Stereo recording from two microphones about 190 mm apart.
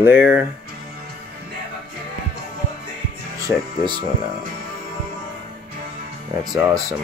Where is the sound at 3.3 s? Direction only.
20° right (ahead or behind).